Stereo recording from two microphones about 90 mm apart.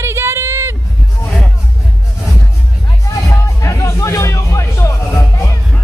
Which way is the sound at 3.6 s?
30° left (ahead or behind).